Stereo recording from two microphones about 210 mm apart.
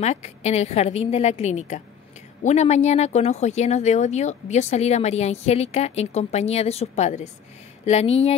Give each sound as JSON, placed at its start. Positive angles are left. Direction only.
{"t": 0.0, "sound": "speech", "side_deg": 30}